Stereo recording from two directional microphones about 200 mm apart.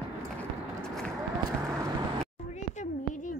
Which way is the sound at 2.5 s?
35° left (ahead or behind).